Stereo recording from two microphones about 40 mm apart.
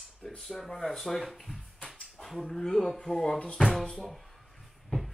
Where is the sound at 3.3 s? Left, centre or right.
Left.